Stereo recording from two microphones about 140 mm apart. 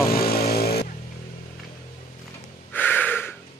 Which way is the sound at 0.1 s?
90° left.